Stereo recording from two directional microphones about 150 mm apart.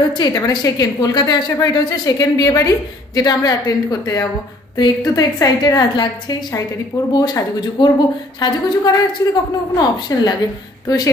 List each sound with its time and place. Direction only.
0.1 s a woman's voice: 30° left (ahead or behind)